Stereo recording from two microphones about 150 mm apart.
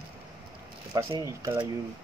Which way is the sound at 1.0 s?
25° right (ahead or behind).